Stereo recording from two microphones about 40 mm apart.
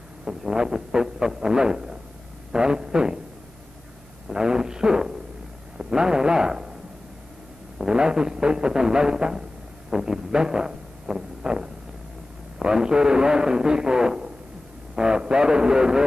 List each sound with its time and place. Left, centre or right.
0.2 s a man's voice: centre
4.3 s speech: centre
7.8 s speech: centre
9.8 s a sound: centre
12.5 s a man's voice: centre